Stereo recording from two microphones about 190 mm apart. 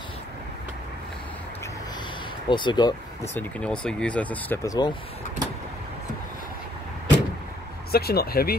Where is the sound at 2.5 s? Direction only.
25° left (ahead or behind).